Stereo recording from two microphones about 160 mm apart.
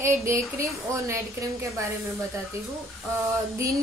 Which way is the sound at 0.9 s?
20° right (ahead or behind).